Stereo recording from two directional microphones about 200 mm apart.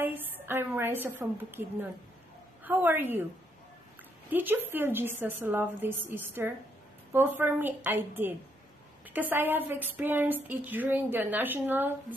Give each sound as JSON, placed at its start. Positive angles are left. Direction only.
{"t": 0.0, "sound": "speech", "side_deg": -10}
{"t": 4.3, "sound": "speech", "side_deg": -10}